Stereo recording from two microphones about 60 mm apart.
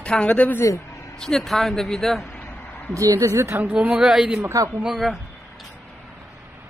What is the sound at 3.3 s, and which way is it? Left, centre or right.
Speech, right.